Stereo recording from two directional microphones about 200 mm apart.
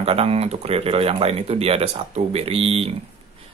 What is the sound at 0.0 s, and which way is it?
Speech, 30° right (ahead or behind).